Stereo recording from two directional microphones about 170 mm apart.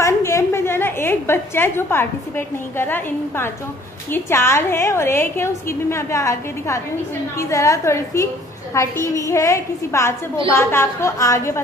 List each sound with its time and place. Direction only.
0.0 s a woman's voice: 15° left (ahead or behind)